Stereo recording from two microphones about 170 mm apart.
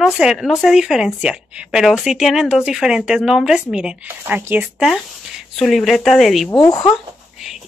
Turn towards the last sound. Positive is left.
turn(degrees=20)  # may be behind; listen again after turning